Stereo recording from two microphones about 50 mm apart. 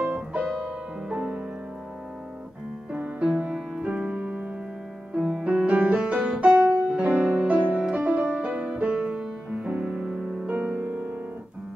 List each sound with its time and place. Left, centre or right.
0.0 s music: right
2.9 s music: right
3.3 s music: centre
5.5 s music: right
10.5 s music: right